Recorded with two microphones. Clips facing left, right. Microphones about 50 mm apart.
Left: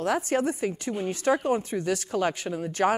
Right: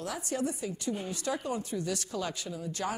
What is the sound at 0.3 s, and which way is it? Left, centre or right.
A woman's voice, left.